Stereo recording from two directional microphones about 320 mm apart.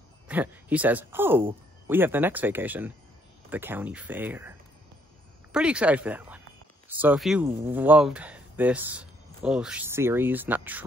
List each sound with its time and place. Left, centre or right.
0.3 s speech: centre